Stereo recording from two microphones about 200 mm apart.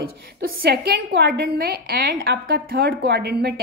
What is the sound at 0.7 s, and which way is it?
A woman's voice, 55° right (ahead or behind).